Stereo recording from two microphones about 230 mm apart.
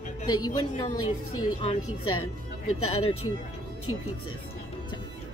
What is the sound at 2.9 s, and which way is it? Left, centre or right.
Speech, left.